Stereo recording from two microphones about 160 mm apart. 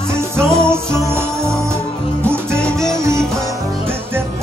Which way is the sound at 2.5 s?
5° left (ahead or behind).